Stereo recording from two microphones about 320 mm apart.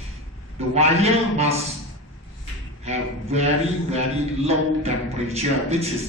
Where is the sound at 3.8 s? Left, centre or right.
Centre.